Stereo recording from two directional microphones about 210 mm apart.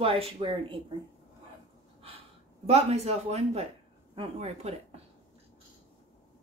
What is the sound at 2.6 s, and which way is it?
Speech, 30° right (ahead or behind).